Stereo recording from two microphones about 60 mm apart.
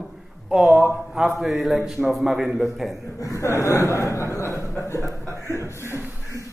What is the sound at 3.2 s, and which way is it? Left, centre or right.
Chuckle, left.